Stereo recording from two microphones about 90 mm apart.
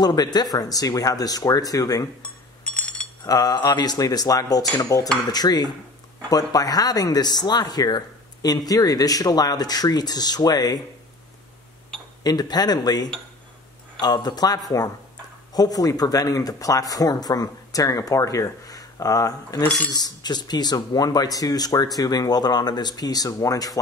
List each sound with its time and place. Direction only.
0.0 s speech: 50° left (ahead or behind)
2.2 s chink: 10° left (ahead or behind)
3.3 s speech: 45° left (ahead or behind)
12.2 s speech: 50° left (ahead or behind)